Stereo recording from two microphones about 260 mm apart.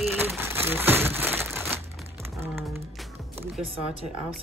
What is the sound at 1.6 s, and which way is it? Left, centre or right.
Crumpling, centre.